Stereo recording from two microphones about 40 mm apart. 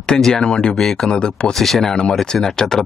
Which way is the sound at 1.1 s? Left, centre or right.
Left.